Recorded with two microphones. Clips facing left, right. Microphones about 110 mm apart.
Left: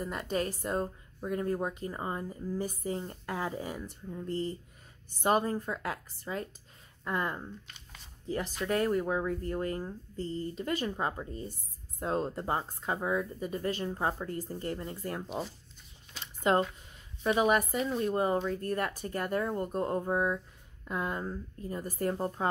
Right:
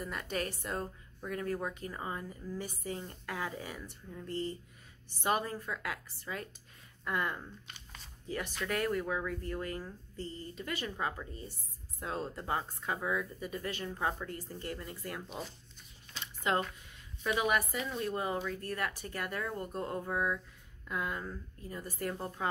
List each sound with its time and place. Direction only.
0.0 s speech: 30° left (ahead or behind)
4.3 s speech: 35° left (ahead or behind)
8.6 s speech: 30° left (ahead or behind)
16.5 s a woman's voice: 35° left (ahead or behind)
17.5 s speech: 40° left (ahead or behind)
17.8 s speech: 30° left (ahead or behind)
21.8 s a woman's voice: 45° left (ahead or behind)
22.1 s speech: 30° left (ahead or behind)